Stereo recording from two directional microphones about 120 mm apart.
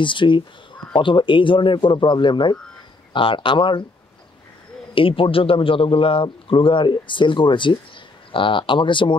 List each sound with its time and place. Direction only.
0.0 s speech: 45° left (ahead or behind)
4.9 s speech: 45° left (ahead or behind)